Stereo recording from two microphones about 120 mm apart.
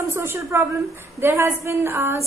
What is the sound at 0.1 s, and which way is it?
A woman's voice, 20° right (ahead or behind).